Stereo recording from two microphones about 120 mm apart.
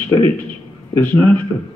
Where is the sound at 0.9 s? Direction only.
20° left (ahead or behind).